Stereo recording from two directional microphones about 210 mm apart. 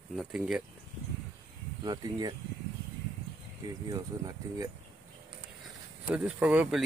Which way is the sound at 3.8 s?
15° right (ahead or behind).